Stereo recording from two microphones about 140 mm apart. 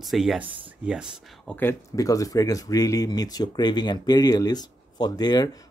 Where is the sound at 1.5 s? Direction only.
15° left (ahead or behind).